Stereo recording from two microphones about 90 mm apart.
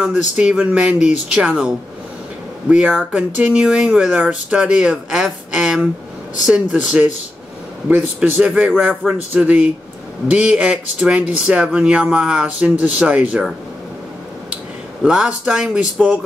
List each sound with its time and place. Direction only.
0.0 s speech: 15° right (ahead or behind)
2.7 s speech: 10° right (ahead or behind)
15.0 s speech: 10° right (ahead or behind)